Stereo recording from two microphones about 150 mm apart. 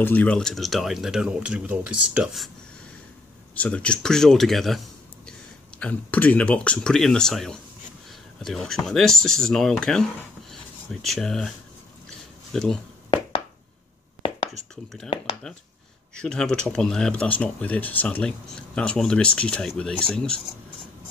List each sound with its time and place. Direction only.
0.0 s speech: 10° left (ahead or behind)
3.5 s speech: 10° left (ahead or behind)
12.5 s speech: centre (ahead or behind)
16.2 s speech: 5° left (ahead or behind)